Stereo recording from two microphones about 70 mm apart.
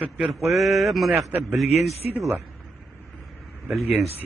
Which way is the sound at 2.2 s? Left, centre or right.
Right.